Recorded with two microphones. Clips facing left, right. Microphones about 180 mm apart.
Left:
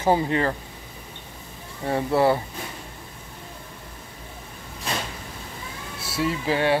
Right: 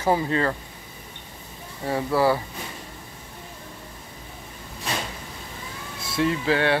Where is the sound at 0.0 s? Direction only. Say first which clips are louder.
Left 1 dB; 20° left (ahead or behind).